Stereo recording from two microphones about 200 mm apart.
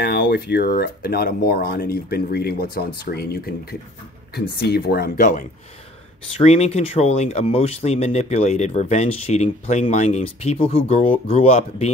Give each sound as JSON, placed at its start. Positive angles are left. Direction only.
{"t": 0.0, "sound": "speech", "side_deg": 55}